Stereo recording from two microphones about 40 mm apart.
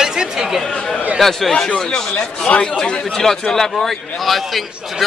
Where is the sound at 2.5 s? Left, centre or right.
Left.